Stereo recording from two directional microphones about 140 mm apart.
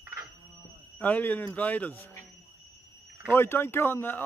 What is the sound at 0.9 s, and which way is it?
Speech, 10° left (ahead or behind).